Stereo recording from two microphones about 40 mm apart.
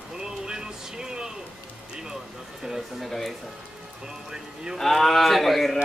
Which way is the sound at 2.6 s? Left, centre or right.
Centre.